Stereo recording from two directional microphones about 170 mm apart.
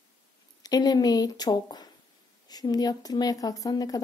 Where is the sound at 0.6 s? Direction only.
20° left (ahead or behind).